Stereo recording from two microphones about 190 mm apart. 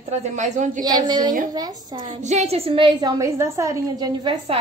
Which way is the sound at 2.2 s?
40° right (ahead or behind).